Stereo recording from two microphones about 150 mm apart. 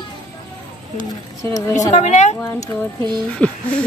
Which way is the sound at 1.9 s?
50° left (ahead or behind).